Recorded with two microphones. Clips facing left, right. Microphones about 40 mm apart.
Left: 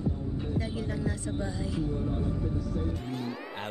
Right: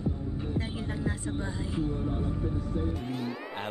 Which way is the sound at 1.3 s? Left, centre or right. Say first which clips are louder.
Even; right.